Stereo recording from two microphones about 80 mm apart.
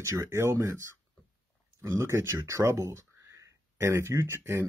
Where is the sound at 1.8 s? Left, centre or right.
Right.